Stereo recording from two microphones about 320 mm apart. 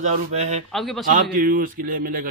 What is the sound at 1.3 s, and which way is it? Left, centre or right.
Speech, right.